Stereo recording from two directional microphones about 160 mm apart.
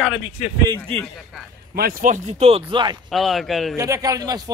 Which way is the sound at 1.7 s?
65° right (ahead or behind).